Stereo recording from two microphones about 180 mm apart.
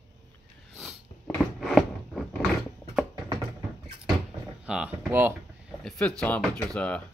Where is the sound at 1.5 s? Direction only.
Centre (ahead or behind).